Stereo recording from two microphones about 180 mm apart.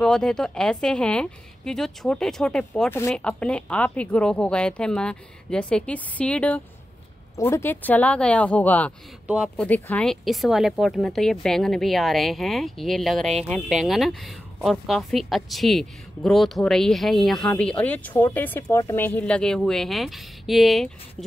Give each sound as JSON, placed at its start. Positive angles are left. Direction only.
{"t": 0.0, "sound": "a woman's voice", "side_deg": 5}